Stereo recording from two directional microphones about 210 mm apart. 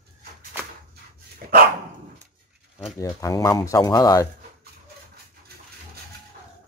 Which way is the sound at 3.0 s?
15° left (ahead or behind).